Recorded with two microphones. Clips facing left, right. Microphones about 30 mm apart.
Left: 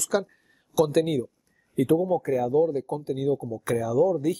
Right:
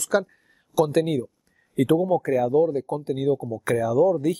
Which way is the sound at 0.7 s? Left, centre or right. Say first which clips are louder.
Right 1 dB; right.